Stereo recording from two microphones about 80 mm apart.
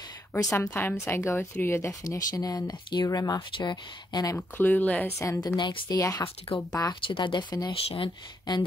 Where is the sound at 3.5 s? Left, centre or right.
Left.